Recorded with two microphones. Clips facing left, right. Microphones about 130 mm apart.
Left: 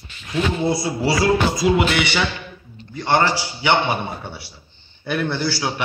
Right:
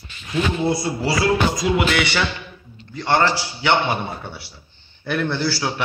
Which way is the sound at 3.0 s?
20° left (ahead or behind).